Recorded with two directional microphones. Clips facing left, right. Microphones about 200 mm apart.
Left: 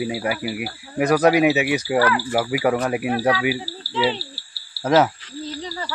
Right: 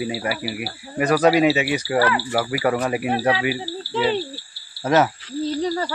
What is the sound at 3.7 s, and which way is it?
Cricket, 10° left (ahead or behind).